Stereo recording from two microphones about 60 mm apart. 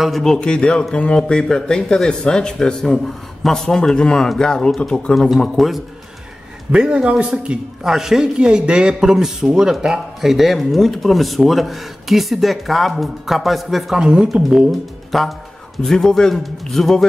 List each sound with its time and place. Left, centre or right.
0.0 s a man's voice: centre
6.7 s a man's voice: centre